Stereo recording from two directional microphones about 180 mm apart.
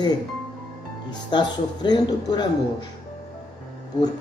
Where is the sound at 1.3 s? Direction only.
25° left (ahead or behind).